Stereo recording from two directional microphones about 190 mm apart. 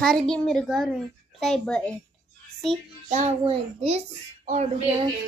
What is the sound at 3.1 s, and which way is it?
A child's voice, 30° right (ahead or behind).